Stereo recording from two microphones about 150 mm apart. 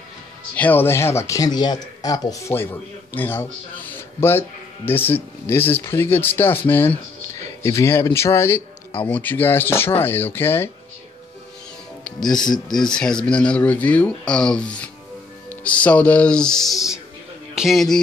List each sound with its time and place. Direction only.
0.6 s speech: 10° left (ahead or behind)
2.5 s speech: 15° left (ahead or behind)
12.0 s music: 5° left (ahead or behind)
12.4 s speech: 30° left (ahead or behind)
12.7 s speech: 5° left (ahead or behind)
17.6 s music: centre (ahead or behind)